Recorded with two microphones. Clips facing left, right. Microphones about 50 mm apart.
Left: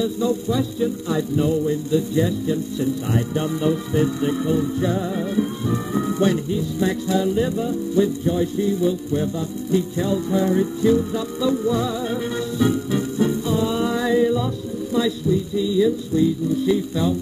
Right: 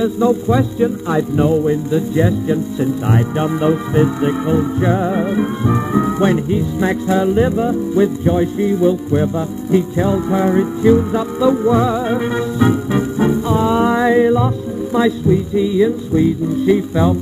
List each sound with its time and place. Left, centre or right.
0.0 s speech: right
11.0 s music: right
15.0 s speech: right